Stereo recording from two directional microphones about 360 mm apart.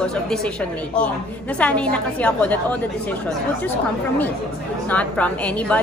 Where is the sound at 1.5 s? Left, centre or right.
Centre.